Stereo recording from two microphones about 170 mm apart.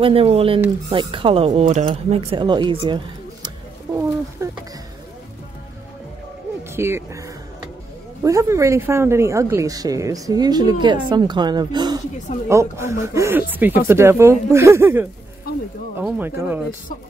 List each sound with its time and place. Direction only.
0.0 s speech: 35° right (ahead or behind)
4.4 s speech: 20° right (ahead or behind)
6.7 s speech: 15° right (ahead or behind)